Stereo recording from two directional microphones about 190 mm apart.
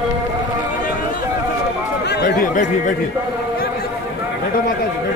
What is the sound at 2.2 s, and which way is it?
Chatter, 45° left (ahead or behind).